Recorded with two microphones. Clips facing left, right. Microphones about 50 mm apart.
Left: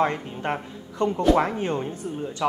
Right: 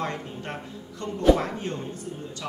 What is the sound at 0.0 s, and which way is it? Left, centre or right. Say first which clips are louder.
Speech: left 7 dB; left.